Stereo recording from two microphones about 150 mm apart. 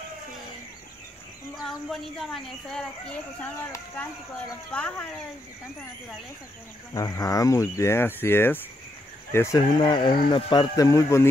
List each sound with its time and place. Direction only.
1.6 s speech: centre (ahead or behind)
4.7 s speech: 10° left (ahead or behind)
6.9 s speech: 25° left (ahead or behind)
9.8 s speech: 30° left (ahead or behind)